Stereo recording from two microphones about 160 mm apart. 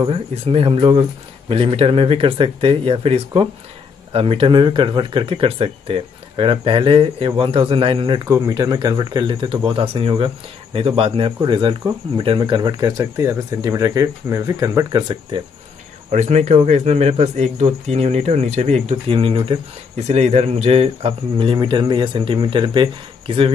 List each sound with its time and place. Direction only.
0.0 s speech: 35° right (ahead or behind)
16.1 s speech: 45° right (ahead or behind)
20.1 s speech: 45° right (ahead or behind)